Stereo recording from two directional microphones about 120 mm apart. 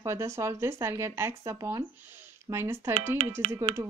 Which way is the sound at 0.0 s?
25° right (ahead or behind).